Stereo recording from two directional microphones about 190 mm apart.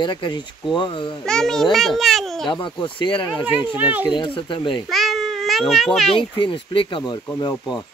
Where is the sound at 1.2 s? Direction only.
5° left (ahead or behind).